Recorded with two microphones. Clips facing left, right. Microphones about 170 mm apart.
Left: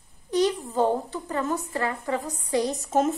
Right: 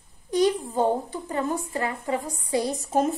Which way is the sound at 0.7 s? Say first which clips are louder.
Even; 15° right (ahead or behind).